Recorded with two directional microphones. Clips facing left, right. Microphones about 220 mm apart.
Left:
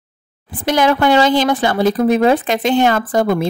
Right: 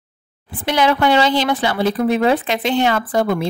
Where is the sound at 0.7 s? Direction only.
45° left (ahead or behind).